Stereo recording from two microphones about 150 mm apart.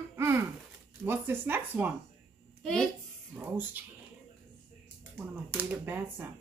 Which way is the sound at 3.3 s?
10° right (ahead or behind).